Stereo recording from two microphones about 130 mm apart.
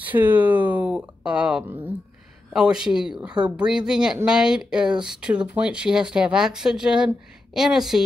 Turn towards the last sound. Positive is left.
turn(degrees=-5)  # may be behind; listen again after turning